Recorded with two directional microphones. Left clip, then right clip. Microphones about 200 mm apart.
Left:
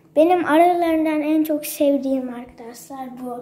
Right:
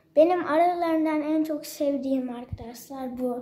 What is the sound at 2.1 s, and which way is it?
A woman's voice, 15° right (ahead or behind).